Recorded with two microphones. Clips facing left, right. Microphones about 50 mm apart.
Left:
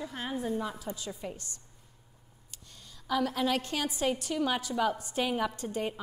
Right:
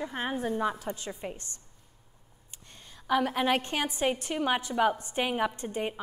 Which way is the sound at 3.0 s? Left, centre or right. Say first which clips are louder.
Right 3 dB; right.